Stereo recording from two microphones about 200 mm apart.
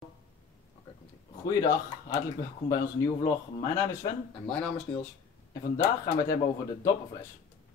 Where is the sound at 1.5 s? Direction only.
15° left (ahead or behind).